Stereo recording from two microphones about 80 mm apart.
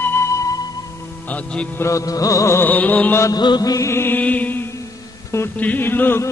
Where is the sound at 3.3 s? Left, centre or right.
Left.